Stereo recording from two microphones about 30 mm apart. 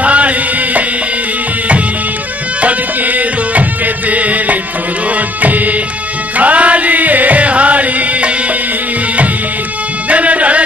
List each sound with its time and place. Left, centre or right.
0.0 s music: right
2.6 s music: right
10.0 s music: right